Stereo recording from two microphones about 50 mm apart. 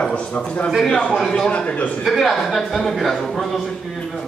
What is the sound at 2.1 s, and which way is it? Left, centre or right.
A man's voice, centre.